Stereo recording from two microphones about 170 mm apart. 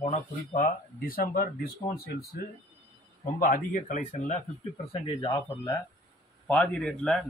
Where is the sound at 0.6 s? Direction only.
60° left (ahead or behind).